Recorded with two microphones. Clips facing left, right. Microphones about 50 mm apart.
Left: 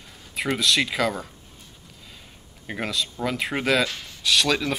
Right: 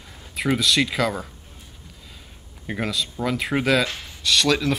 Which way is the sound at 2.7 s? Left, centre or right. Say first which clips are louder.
Right 2 dB; centre.